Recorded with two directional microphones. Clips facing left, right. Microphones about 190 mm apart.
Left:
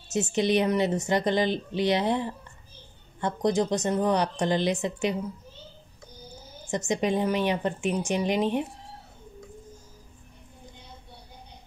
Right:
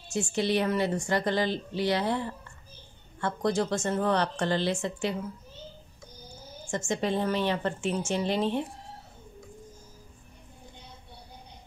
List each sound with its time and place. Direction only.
0.1 s a woman's voice: 20° left (ahead or behind)
6.6 s a woman's voice: 20° left (ahead or behind)